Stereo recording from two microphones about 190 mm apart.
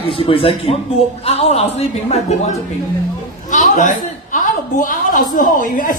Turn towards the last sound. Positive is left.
turn(degrees=45)  # may be behind; listen again after turning